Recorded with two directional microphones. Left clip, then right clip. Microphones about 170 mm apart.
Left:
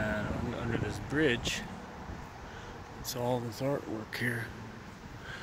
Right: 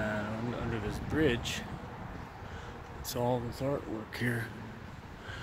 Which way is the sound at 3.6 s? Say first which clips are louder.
Left 1 dB; centre (ahead or behind).